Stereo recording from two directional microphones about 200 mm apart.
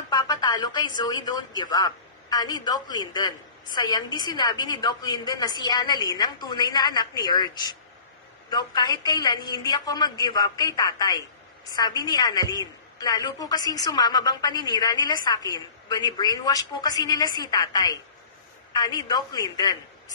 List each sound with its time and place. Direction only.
0.1 s a woman's voice: 20° left (ahead or behind)